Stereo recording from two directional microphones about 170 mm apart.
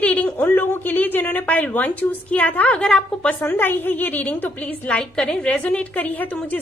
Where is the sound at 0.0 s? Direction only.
10° left (ahead or behind).